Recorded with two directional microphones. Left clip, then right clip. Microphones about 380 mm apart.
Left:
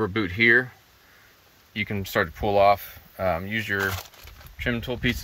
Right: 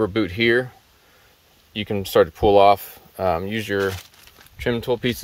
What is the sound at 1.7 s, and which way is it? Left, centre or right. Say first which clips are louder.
Speech: right 6 dB; centre.